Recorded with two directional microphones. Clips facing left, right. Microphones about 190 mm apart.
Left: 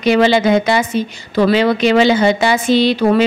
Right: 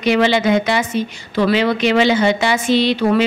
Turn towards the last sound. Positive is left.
turn(degrees=40)  # may be behind; listen again after turning